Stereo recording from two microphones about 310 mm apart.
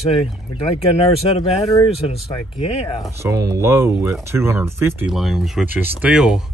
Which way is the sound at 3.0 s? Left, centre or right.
Centre.